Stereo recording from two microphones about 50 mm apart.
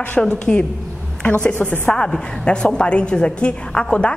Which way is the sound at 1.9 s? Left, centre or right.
Centre.